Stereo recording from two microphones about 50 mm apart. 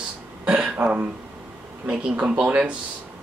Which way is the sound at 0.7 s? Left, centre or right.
Right.